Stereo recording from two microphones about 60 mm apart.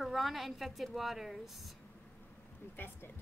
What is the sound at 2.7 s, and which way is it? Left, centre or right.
Speech, left.